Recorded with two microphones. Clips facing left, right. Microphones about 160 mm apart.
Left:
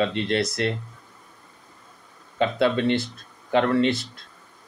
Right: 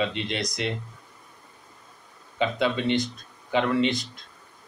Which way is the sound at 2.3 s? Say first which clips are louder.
Left 3 dB; centre (ahead or behind).